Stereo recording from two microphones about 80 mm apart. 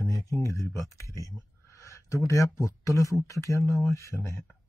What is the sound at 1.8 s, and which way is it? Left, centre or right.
Speech, left.